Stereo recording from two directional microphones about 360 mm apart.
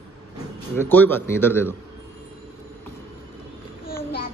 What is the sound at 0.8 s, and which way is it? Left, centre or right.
Speech, centre.